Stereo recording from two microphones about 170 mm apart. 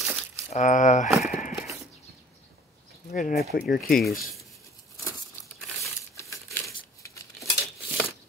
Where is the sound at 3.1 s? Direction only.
50° left (ahead or behind).